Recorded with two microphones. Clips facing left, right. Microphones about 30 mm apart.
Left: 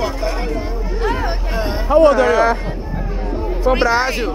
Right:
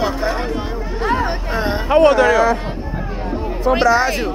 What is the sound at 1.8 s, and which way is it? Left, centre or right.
Speech, right.